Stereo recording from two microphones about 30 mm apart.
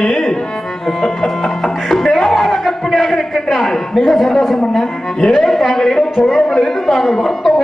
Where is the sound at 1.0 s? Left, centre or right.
Centre.